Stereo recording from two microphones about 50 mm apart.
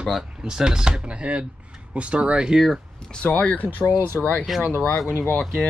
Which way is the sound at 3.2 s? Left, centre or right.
Left.